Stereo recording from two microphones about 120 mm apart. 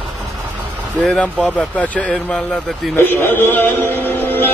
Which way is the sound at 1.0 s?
5° left (ahead or behind).